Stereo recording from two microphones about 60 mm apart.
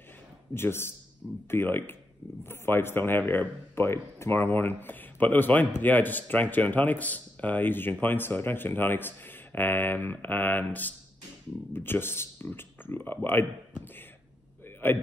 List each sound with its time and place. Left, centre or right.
0.6 s a man's voice: left